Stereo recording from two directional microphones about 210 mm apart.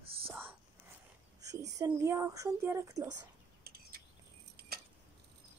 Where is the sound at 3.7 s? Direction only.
45° right (ahead or behind).